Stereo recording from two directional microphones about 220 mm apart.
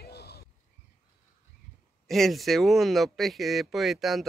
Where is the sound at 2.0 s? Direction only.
Centre (ahead or behind).